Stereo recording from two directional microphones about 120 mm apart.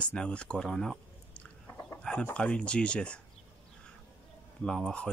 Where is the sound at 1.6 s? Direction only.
20° left (ahead or behind).